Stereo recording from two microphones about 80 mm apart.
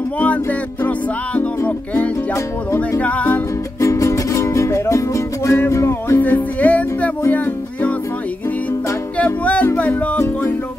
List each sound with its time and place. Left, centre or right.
0.2 s music: centre
2.3 s music: left
3.0 s music: centre
3.8 s music: left; by 7.9 s centre
9.2 s music: centre